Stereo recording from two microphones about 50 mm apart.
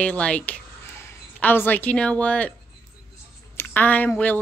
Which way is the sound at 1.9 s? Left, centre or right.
Left.